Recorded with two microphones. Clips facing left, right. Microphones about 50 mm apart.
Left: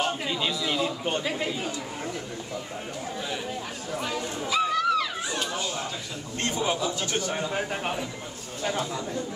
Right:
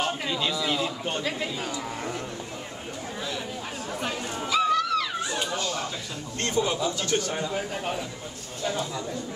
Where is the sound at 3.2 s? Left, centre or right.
Centre.